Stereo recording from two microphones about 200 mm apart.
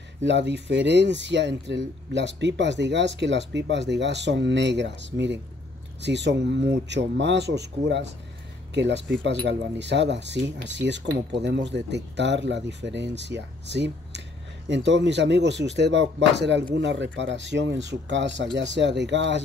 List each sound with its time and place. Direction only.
0.2 s speech: 60° right (ahead or behind)